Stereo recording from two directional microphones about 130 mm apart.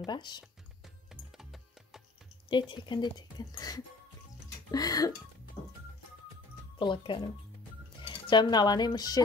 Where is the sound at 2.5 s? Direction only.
35° left (ahead or behind).